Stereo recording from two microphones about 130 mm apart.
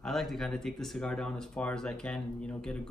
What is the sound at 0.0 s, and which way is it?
Speech, centre (ahead or behind).